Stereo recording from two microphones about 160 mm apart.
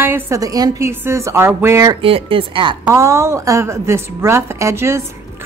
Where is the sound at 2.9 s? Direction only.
20° right (ahead or behind).